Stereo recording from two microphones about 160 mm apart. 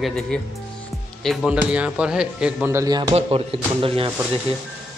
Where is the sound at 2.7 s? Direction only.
25° right (ahead or behind).